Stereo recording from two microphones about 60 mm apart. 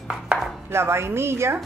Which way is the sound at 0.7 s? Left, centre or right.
Right.